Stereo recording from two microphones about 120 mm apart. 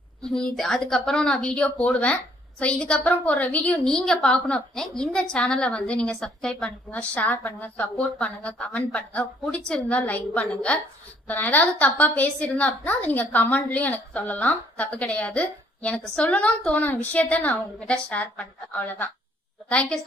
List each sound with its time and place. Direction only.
0.2 s a woman's voice: 5° left (ahead or behind)